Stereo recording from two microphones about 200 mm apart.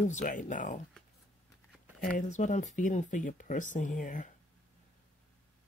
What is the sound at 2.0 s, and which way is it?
Speech, 40° left (ahead or behind).